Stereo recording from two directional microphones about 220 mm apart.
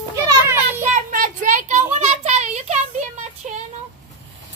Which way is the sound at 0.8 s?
35° right (ahead or behind).